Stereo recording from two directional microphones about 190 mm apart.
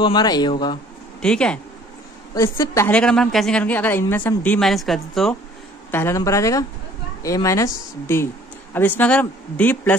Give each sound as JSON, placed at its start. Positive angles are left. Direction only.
{"t": 0.0, "sound": "a man's voice", "side_deg": 20}
{"t": 1.2, "sound": "a woman's voice", "side_deg": 5}
{"t": 5.9, "sound": "a woman's voice", "side_deg": 10}